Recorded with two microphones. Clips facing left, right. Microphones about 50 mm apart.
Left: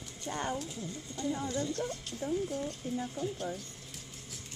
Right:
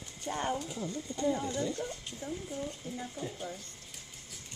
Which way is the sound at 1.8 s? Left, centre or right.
Centre.